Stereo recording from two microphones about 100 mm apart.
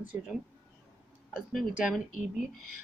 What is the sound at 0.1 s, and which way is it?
Speech, 15° right (ahead or behind).